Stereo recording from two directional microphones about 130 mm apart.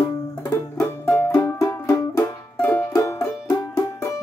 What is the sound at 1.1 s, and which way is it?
Music, 15° left (ahead or behind).